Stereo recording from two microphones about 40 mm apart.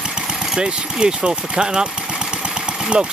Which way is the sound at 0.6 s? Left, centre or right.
Right.